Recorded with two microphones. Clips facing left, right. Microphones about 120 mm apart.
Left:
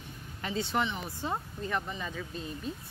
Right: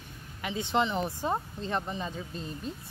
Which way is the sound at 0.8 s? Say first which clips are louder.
Right 5 dB; 30° right (ahead or behind).